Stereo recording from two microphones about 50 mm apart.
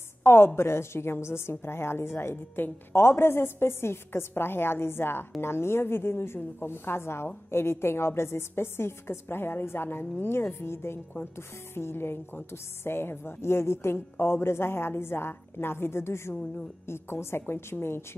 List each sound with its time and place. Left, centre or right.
0.2 s a woman's voice: left